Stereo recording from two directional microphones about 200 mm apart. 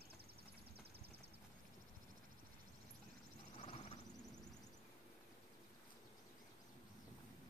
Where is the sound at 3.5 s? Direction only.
30° left (ahead or behind).